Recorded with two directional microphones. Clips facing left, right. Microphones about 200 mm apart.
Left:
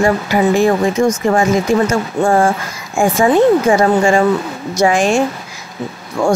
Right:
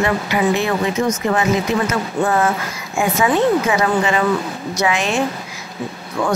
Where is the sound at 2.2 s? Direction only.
30° left (ahead or behind).